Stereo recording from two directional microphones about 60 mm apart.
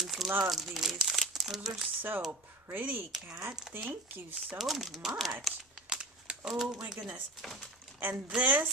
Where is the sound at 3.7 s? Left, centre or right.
Centre.